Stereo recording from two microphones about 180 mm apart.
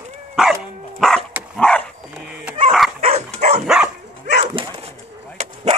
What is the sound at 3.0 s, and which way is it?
Dog, 35° right (ahead or behind).